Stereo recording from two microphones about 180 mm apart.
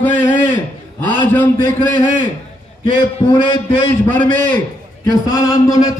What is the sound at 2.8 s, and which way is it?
Speech, 25° left (ahead or behind).